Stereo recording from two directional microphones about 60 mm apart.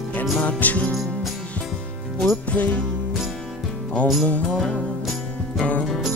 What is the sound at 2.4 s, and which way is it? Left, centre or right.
Music, left.